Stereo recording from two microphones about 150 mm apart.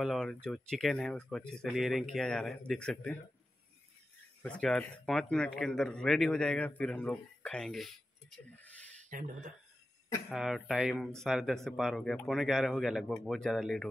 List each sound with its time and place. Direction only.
0.0 s speech: 5° left (ahead or behind)
4.4 s speech: 5° left (ahead or behind)
9.1 s speech: 60° right (ahead or behind)
10.3 s speech: centre (ahead or behind)